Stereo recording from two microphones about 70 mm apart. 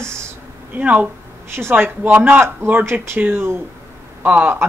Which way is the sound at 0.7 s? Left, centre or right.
Right.